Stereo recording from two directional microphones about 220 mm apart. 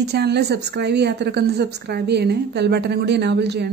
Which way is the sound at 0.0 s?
50° right (ahead or behind).